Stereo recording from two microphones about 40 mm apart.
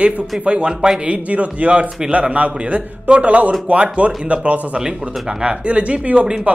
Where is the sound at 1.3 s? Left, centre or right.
Right.